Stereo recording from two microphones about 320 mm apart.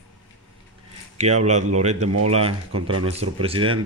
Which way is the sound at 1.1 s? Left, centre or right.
Right.